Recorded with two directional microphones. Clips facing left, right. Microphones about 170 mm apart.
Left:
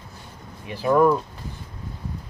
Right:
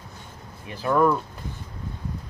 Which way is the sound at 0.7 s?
15° left (ahead or behind).